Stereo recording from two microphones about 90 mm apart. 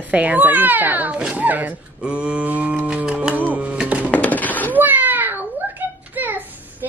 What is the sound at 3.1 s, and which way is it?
Music, 15° right (ahead or behind).